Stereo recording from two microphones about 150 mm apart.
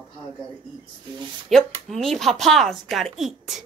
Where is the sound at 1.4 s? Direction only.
Centre (ahead or behind).